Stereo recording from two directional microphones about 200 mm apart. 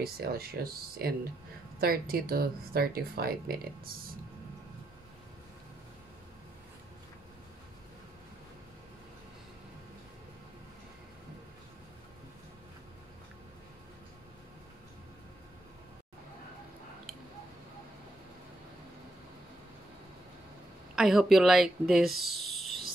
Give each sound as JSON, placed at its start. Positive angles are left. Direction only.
{"t": 0.0, "sound": "speech", "side_deg": -50}
{"t": 20.9, "sound": "a woman's voice", "side_deg": 0}
{"t": 22.6, "sound": "a sound", "side_deg": 0}